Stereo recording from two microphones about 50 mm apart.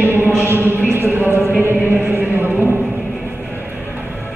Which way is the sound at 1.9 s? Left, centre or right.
Right.